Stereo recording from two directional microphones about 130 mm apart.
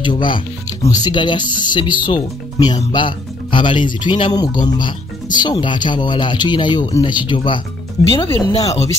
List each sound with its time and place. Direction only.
0.0 s speech: 40° left (ahead or behind)